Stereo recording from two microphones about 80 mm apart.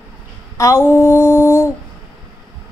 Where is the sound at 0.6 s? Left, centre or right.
Left.